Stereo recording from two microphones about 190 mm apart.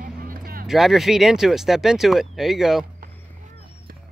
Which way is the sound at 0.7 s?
Centre (ahead or behind).